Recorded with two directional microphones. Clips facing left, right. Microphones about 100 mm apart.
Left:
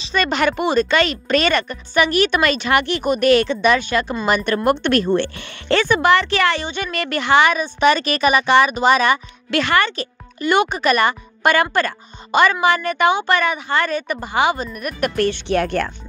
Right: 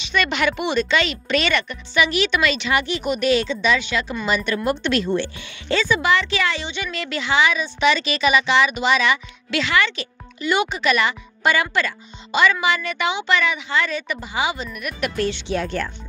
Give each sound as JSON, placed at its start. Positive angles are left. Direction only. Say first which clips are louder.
{"t": 0.0, "sound": "speech", "louder": "left 3 dB", "side_deg": 40}